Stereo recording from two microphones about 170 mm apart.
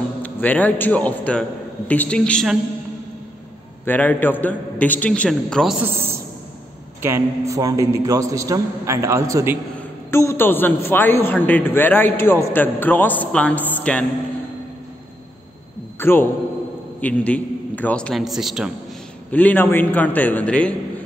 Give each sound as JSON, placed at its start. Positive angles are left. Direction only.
{"t": 0.2, "sound": "a man's voice", "side_deg": 10}
{"t": 3.8, "sound": "a man's voice", "side_deg": 10}
{"t": 5.8, "sound": "a man's voice", "side_deg": -15}
{"t": 9.8, "sound": "a man's voice", "side_deg": 15}
{"t": 16.0, "sound": "a man's voice", "side_deg": 15}
{"t": 19.3, "sound": "a man's voice", "side_deg": 10}